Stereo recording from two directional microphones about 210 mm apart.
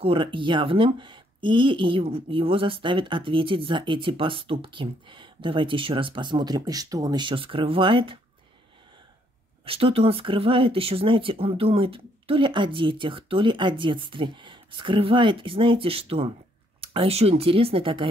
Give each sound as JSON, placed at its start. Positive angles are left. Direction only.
{"t": 0.0, "sound": "speech", "side_deg": -25}
{"t": 9.7, "sound": "speech", "side_deg": -25}